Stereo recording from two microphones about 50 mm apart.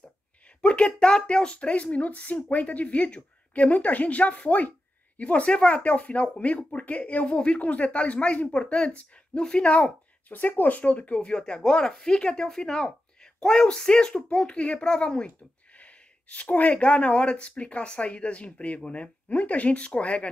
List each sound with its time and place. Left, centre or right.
0.6 s a woman's voice: left
10.3 s a woman's voice: left